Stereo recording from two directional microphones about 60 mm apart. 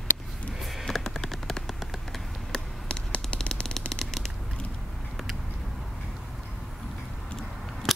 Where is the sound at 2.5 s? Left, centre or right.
Centre.